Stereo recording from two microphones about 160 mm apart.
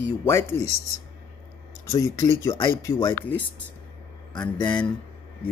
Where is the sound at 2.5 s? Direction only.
30° left (ahead or behind).